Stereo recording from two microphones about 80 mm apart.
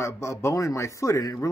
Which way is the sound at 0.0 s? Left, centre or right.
Left.